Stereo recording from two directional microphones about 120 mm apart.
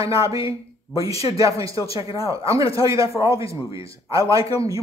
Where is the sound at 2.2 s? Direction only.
25° right (ahead or behind).